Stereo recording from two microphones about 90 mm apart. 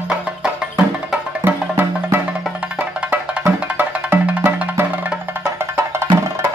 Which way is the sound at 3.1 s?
20° right (ahead or behind).